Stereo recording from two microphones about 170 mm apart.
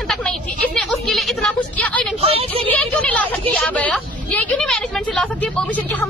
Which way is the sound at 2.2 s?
35° right (ahead or behind).